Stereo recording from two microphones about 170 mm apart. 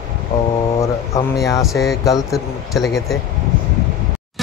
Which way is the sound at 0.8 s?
20° left (ahead or behind).